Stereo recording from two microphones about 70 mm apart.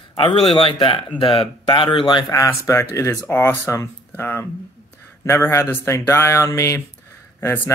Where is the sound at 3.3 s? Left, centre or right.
Left.